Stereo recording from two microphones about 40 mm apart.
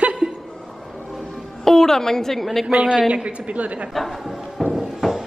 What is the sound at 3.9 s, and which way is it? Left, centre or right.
Music, centre.